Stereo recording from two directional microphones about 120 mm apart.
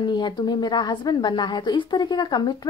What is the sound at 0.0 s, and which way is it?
A woman's voice, 40° left (ahead or behind).